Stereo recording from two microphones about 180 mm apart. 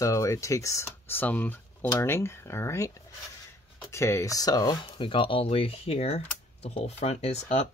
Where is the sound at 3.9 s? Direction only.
15° left (ahead or behind).